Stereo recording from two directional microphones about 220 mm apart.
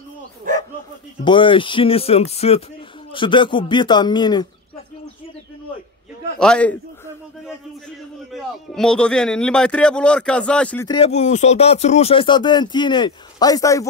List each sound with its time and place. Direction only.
1.2 s speech: 20° left (ahead or behind)
6.4 s speech: 5° left (ahead or behind)
8.3 s speech: 5° left (ahead or behind)
10.9 s speech: 30° left (ahead or behind)